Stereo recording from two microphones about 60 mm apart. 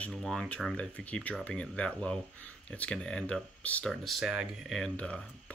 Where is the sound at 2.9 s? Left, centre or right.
Centre.